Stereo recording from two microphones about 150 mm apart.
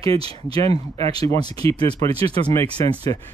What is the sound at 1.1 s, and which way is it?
Speech, 25° left (ahead or behind).